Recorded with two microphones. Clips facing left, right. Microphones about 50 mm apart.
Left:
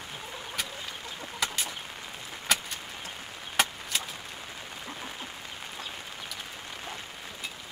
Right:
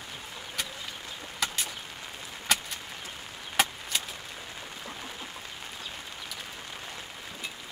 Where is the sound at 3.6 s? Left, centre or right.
Centre.